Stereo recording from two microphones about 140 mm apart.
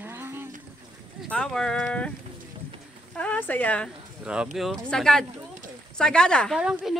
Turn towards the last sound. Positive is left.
turn(degrees=-5)  # may be behind; listen again after turning